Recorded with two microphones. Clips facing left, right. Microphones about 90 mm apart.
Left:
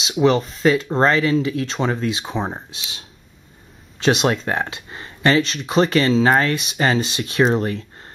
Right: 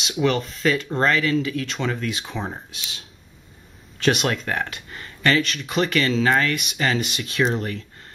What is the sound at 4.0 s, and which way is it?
Speech, 30° left (ahead or behind).